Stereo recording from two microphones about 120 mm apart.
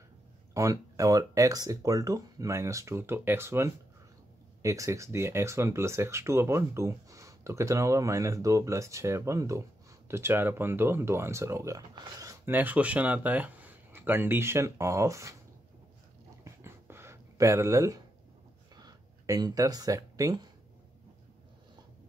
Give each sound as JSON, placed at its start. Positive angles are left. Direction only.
{"t": 0.6, "sound": "speech", "side_deg": -25}
{"t": 12.4, "sound": "speech", "side_deg": -15}
{"t": 16.4, "sound": "a sound", "side_deg": -20}